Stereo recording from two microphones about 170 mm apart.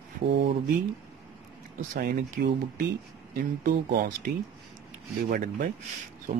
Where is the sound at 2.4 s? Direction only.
65° right (ahead or behind).